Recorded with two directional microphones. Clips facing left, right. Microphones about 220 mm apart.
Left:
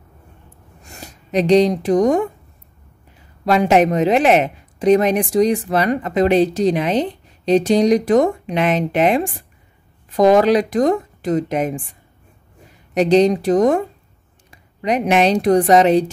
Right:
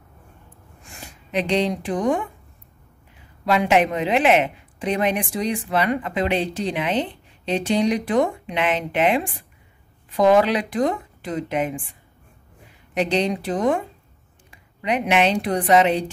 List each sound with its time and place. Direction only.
0.8 s speech: 40° left (ahead or behind)
3.4 s speech: 40° left (ahead or behind)
12.9 s speech: 40° left (ahead or behind)